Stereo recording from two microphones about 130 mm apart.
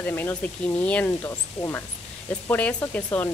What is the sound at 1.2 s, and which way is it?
Speech, 20° left (ahead or behind).